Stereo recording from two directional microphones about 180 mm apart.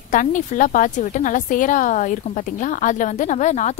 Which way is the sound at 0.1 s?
45° left (ahead or behind).